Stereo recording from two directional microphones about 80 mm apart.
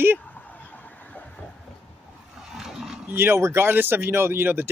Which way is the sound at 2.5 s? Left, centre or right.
Centre.